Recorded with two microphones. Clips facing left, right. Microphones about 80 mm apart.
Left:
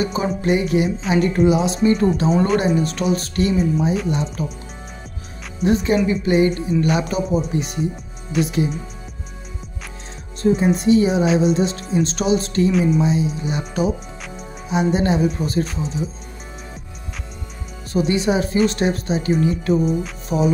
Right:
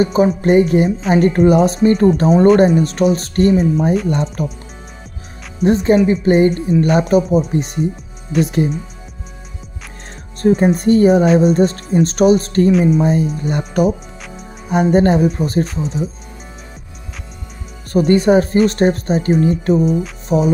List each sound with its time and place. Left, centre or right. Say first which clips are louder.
0.0 s speech: right 7 dB; right
5.6 s speech: right 5 dB; right
10.4 s speech: right 4 dB; right
15.6 s speech: right 4 dB; centre
17.9 s speech: right 7 dB; right
19.8 s speech: right 4 dB; centre
20.2 s speech: right 4 dB; right